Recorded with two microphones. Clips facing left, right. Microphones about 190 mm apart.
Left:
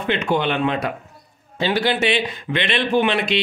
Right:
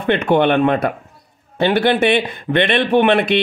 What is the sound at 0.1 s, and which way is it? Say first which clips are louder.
A man's voice: right 7 dB; 55° right (ahead or behind).